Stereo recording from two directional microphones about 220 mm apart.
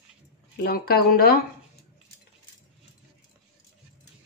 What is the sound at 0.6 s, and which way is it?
Speech, 45° left (ahead or behind).